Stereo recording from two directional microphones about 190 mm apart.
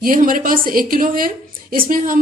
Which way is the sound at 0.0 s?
45° right (ahead or behind).